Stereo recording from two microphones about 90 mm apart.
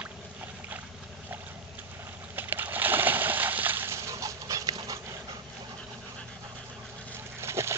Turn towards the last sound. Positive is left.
turn(degrees=-30)  # may be behind; listen again after turning